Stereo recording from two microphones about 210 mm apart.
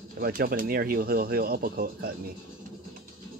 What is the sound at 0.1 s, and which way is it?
Speech, 45° right (ahead or behind).